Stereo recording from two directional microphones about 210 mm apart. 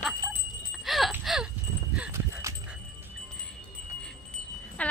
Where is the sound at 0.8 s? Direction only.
Centre (ahead or behind).